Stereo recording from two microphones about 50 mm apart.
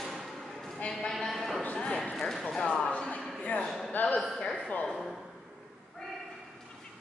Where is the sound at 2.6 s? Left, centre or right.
Left.